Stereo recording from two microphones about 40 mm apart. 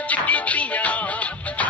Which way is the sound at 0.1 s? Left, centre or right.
Left.